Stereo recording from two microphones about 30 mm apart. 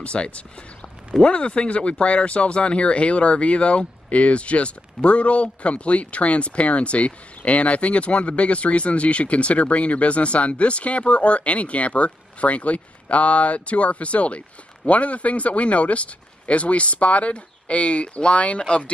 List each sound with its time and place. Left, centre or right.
0.0 s speech: left
18.6 s speech: left